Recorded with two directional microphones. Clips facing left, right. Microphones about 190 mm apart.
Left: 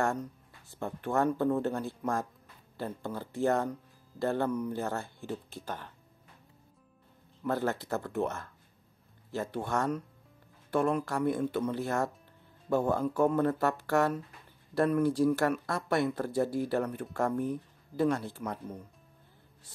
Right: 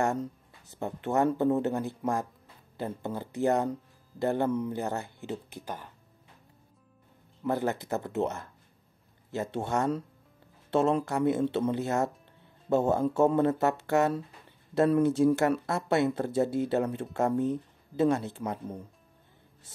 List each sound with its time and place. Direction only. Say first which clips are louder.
0.0 s speech: right 2 dB; 20° right (ahead or behind)
7.4 s speech: right 2 dB; 15° right (ahead or behind)